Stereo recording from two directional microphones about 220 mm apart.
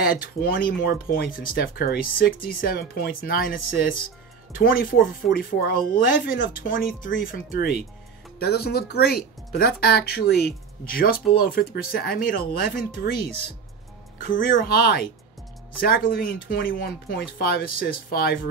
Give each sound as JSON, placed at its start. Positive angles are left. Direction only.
{"t": 0.0, "sound": "speech", "side_deg": 40}
{"t": 14.1, "sound": "speech", "side_deg": 40}